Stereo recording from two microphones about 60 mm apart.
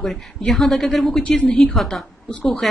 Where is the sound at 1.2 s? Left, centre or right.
Centre.